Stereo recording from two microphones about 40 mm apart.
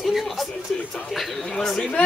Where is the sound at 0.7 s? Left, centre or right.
Centre.